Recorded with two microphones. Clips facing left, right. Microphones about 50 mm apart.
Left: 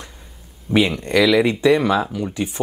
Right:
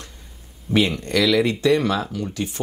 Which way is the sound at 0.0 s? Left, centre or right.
Centre.